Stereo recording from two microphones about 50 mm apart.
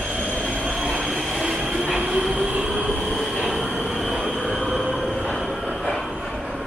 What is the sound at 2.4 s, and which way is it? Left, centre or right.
Train, right.